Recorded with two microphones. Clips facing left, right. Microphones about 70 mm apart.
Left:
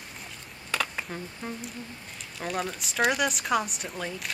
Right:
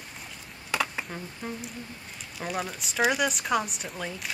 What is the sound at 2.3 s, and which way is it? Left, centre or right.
Speech, centre.